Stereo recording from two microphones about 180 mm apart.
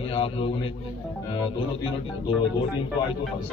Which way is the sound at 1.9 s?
30° left (ahead or behind).